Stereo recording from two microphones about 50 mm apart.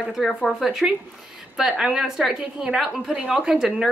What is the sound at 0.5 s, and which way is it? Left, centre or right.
A woman's voice, centre.